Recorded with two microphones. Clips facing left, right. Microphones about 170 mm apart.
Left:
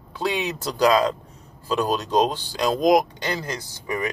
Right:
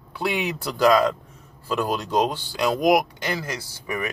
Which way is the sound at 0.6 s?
15° left (ahead or behind).